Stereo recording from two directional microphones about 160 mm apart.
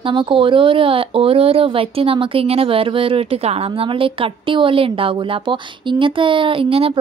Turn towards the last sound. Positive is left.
turn(degrees=-35)  # may be behind; listen again after turning